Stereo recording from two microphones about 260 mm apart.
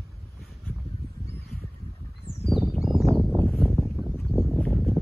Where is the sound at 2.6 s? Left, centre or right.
Centre.